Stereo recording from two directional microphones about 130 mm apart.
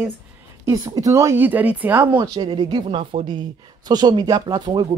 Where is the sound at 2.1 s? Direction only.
30° right (ahead or behind).